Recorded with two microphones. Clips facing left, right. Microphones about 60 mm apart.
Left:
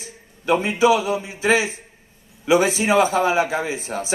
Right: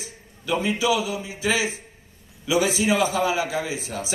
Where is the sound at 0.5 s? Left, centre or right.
Left.